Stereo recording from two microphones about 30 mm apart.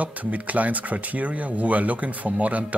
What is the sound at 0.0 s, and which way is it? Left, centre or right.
Speech, right.